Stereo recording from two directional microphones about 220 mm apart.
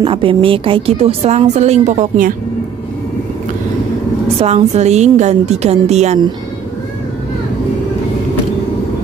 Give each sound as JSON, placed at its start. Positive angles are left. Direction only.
{"t": 0.0, "sound": "speech", "side_deg": -25}
{"t": 4.4, "sound": "speech", "side_deg": -30}